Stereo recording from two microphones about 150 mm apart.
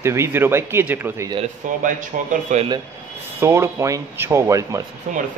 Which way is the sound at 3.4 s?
20° right (ahead or behind).